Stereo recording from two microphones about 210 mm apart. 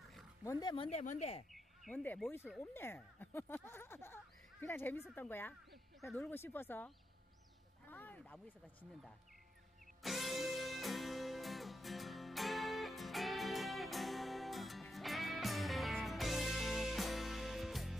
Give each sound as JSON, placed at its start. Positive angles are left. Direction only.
{"t": 0.4, "sound": "speech", "side_deg": 15}
{"t": 1.5, "sound": "speech", "side_deg": 5}
{"t": 10.0, "sound": "music", "side_deg": 0}